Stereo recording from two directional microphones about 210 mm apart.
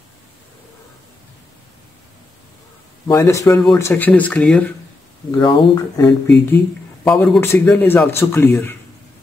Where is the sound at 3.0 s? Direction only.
15° left (ahead or behind).